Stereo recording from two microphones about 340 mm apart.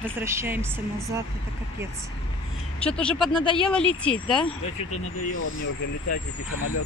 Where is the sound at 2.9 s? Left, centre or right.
Centre.